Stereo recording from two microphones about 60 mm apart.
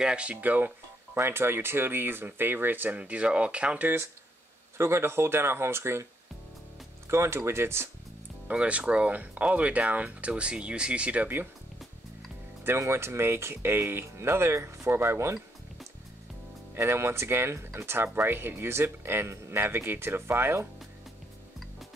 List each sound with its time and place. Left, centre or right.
0.0 s speech: centre
1.1 s speech: right
4.7 s speech: right
7.1 s speech: right
8.5 s speech: right
12.6 s speech: right
16.7 s speech: right